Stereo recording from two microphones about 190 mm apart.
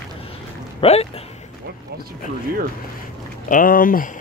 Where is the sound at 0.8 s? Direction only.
30° left (ahead or behind).